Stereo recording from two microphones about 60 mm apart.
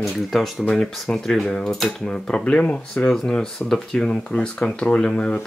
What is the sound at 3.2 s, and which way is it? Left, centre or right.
Speech, centre.